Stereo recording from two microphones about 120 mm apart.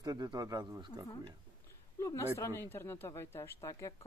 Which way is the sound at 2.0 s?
25° left (ahead or behind).